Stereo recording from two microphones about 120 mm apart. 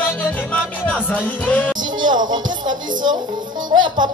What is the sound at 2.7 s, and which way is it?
Speech, 35° right (ahead or behind).